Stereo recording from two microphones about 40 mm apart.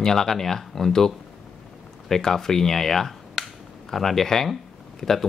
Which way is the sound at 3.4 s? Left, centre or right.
Centre.